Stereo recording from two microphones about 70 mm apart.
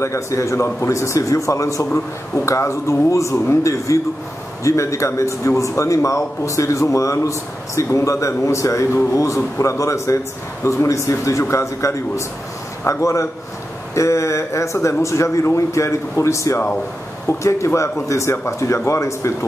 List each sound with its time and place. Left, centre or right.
0.0 s a man's voice: left